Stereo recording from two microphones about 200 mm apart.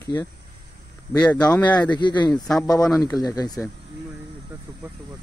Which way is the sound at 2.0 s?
20° left (ahead or behind).